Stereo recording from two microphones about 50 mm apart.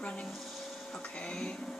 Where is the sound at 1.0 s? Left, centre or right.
Left.